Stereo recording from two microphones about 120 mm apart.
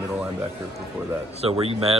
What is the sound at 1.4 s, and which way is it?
Speech, 55° right (ahead or behind).